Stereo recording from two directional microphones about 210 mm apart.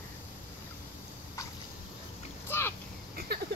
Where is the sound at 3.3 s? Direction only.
50° right (ahead or behind).